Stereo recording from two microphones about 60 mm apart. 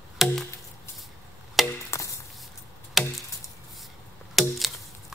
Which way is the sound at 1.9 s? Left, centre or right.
Left.